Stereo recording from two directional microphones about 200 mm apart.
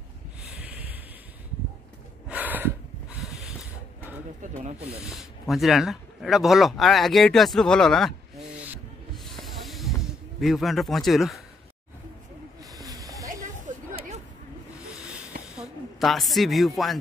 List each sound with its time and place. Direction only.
2.2 s snort: 10° right (ahead or behind)
4.4 s speech: 35° right (ahead or behind)
5.0 s speech: centre (ahead or behind)
9.1 s snake: centre (ahead or behind)
10.4 s speech: centre (ahead or behind)
12.7 s snake: 15° right (ahead or behind)
13.7 s a sound: 40° right (ahead or behind)
15.5 s speech: centre (ahead or behind)